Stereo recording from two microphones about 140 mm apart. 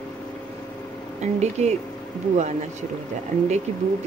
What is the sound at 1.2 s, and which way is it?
Speech, 55° right (ahead or behind).